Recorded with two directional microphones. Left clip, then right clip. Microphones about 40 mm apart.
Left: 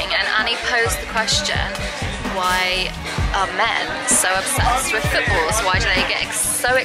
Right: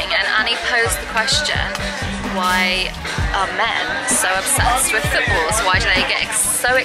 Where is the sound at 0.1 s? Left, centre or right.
Centre.